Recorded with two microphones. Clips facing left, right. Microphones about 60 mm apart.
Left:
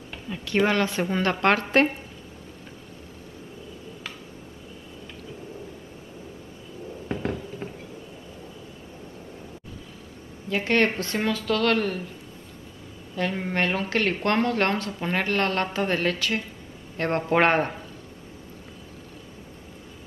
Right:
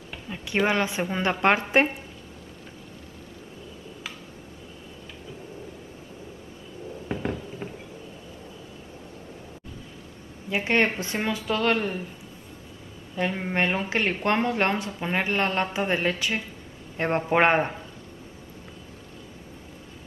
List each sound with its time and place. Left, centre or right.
0.3 s a woman's voice: centre
7.1 s a sound: centre
10.5 s a woman's voice: centre
13.1 s a woman's voice: centre